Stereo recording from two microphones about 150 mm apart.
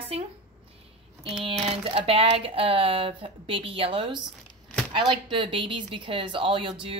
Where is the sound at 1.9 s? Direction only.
40° right (ahead or behind).